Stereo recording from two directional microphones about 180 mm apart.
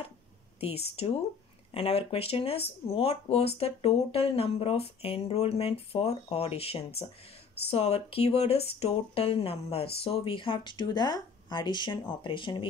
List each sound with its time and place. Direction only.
0.6 s speech: 35° left (ahead or behind)